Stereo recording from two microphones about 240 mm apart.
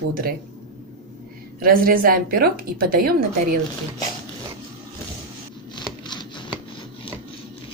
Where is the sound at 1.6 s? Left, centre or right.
Right.